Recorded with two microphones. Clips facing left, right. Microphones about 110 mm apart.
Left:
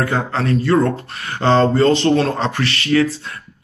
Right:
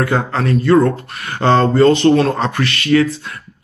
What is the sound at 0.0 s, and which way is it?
Speech, 30° left (ahead or behind).